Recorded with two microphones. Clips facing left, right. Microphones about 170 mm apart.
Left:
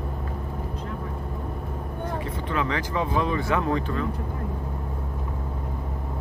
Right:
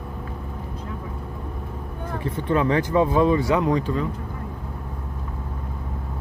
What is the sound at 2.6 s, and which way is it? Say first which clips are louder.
Speech: right 7 dB; 25° right (ahead or behind).